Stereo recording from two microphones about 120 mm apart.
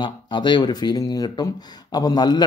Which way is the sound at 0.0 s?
40° left (ahead or behind).